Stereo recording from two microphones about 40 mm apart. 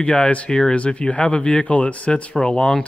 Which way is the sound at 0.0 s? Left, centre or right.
Left.